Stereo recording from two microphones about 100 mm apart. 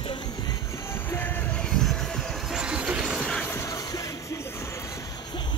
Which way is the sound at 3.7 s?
35° left (ahead or behind).